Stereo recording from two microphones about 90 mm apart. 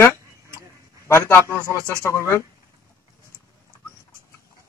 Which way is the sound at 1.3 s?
30° left (ahead or behind).